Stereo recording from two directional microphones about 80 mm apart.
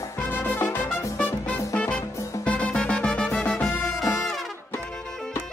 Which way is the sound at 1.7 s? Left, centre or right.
Centre.